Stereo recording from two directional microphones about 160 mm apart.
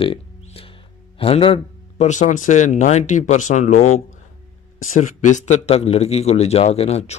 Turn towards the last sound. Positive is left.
turn(degrees=40)  # may be behind; listen again after turning